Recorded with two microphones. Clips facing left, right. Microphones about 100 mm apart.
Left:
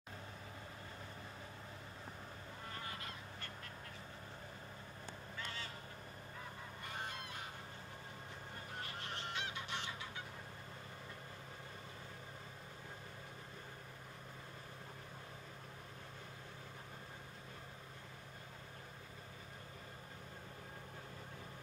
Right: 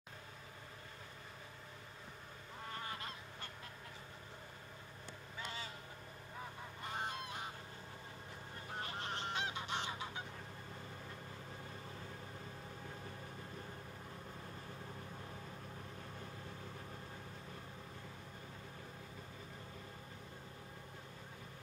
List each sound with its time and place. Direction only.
9.1 s goose: 25° right (ahead or behind)